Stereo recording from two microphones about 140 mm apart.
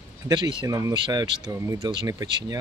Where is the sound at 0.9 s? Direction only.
35° right (ahead or behind).